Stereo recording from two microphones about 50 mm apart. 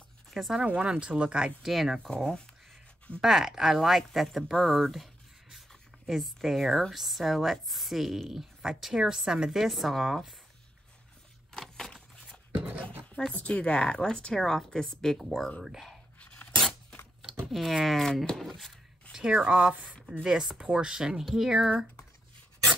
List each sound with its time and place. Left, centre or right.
0.3 s speech: centre
0.7 s speech: right
1.6 s a woman's voice: centre
2.1 s speech: centre
3.2 s a woman's voice: centre
11.5 s a sound: centre
12.5 s a sound: right
13.4 s speech: left; by 15.5 s centre
15.6 s speech: centre
16.2 s a sound: left
17.5 s a woman's voice: centre
19.7 s speech: right; by 21.7 s centre